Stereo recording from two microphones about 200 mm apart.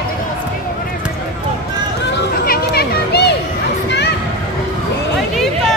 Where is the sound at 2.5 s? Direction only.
55° left (ahead or behind).